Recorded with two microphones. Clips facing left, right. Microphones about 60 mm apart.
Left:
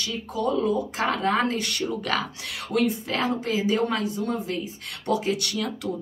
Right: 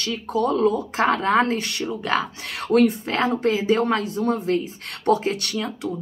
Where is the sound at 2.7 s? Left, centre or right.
Right.